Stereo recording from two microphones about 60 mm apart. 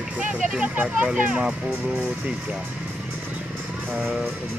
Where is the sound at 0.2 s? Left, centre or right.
Right.